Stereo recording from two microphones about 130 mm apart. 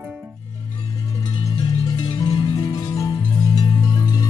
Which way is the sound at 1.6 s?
35° left (ahead or behind).